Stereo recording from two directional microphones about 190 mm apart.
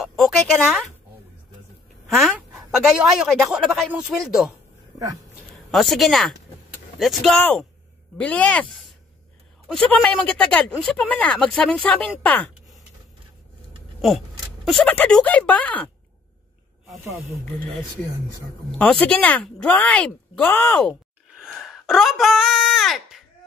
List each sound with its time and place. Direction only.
0.0 s speech: centre (ahead or behind)
2.0 s a woman's voice: centre (ahead or behind)
5.7 s a woman's voice: centre (ahead or behind)
9.7 s a woman's voice: 5° left (ahead or behind)
14.0 s speech: centre (ahead or behind)
18.7 s speech: 5° left (ahead or behind)
20.9 s a sound: centre (ahead or behind)